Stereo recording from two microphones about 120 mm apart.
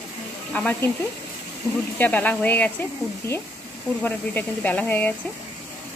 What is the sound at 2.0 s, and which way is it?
Speech, 15° left (ahead or behind).